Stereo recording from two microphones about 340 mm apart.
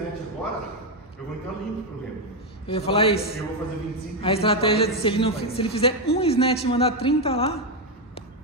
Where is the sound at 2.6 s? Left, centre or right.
Centre.